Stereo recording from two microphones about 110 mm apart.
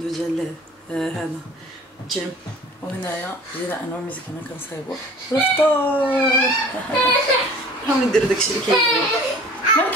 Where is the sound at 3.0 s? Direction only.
20° left (ahead or behind).